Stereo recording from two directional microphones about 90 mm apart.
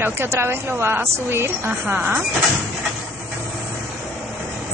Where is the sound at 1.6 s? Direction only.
15° right (ahead or behind).